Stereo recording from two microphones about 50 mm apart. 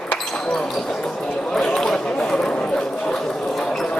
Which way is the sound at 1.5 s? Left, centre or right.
Centre.